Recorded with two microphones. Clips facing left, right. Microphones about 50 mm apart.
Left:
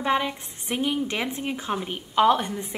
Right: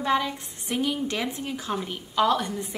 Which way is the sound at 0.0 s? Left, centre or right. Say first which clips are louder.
Left 1 dB; left.